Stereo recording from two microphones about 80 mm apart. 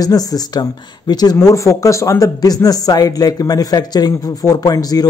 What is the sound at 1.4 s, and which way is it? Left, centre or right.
Speech, left.